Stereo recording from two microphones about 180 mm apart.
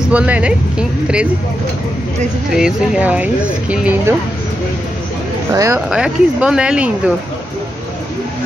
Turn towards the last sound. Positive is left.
turn(degrees=-5)  # may be behind; listen again after turning